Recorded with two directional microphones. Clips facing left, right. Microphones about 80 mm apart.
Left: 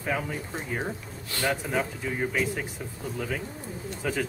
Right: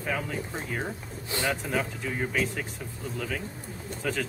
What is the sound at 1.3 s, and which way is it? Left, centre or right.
Speech, right.